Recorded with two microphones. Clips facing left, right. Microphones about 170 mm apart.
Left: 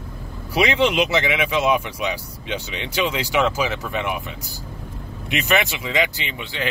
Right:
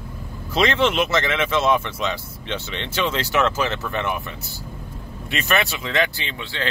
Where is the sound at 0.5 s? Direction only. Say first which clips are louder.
Left 1 dB; 15° left (ahead or behind).